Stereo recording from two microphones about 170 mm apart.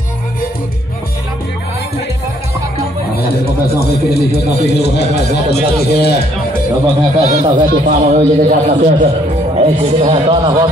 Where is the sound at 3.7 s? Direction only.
70° left (ahead or behind).